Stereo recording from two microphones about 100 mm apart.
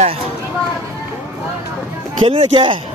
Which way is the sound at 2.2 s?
60° right (ahead or behind).